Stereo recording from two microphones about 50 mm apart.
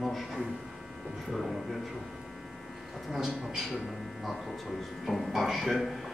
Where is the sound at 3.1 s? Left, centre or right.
Centre.